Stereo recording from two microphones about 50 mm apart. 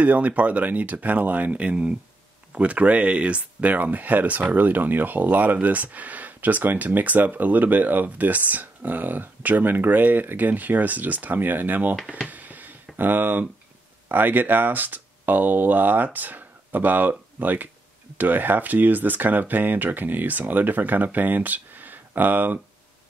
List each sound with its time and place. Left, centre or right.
0.0 s speech: right
12.3 s a sound: right
14.0 s speech: right